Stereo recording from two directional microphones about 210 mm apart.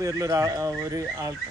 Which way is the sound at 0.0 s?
15° right (ahead or behind).